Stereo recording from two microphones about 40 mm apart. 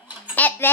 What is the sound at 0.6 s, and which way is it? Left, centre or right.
Speech, left.